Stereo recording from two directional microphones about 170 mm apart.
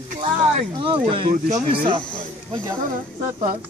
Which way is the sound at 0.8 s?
30° right (ahead or behind).